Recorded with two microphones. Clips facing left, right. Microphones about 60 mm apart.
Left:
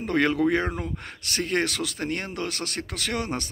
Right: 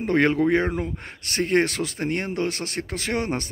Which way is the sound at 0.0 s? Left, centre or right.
Right.